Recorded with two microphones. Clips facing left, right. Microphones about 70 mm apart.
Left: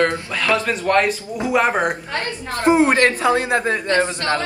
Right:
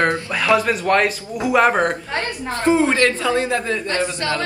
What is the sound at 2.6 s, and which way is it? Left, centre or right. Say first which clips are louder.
A man's voice: left 2 dB; left.